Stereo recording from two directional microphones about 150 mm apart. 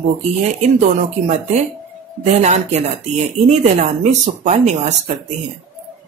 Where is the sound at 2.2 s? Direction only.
45° right (ahead or behind).